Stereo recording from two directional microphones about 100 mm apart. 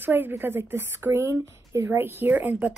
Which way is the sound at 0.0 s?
20° right (ahead or behind).